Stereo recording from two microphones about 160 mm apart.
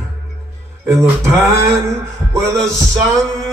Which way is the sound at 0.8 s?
15° right (ahead or behind).